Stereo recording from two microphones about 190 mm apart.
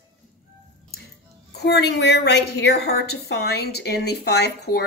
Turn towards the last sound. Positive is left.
turn(degrees=60)  # may be behind; listen again after turning